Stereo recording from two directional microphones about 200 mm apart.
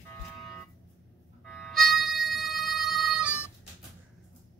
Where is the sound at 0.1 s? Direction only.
5° left (ahead or behind).